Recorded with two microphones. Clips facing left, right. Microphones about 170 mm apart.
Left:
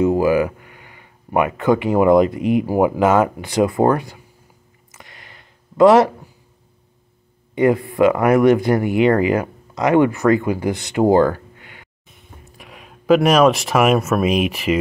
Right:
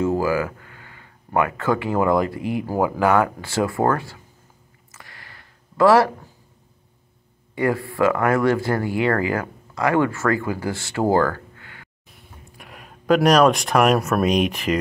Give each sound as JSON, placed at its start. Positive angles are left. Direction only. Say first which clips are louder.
{"t": 0.0, "sound": "speech", "louder": "left 5 dB", "side_deg": 15}
{"t": 4.9, "sound": "a sound", "louder": "left 2 dB", "side_deg": 20}
{"t": 7.5, "sound": "speech", "louder": "left 6 dB", "side_deg": 20}
{"t": 12.1, "sound": "speech", "louder": "left 3 dB", "side_deg": 0}